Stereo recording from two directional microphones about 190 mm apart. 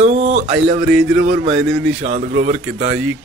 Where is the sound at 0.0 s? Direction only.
35° right (ahead or behind).